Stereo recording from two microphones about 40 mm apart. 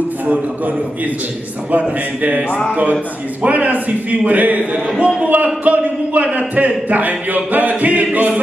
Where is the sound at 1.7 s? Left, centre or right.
Right.